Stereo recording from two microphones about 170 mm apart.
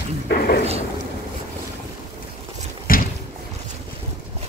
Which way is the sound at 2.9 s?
55° left (ahead or behind).